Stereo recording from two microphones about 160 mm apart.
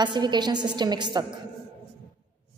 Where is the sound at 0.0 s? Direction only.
25° right (ahead or behind).